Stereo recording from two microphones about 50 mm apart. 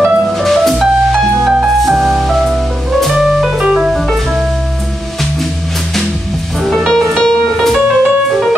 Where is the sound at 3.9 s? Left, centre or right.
Centre.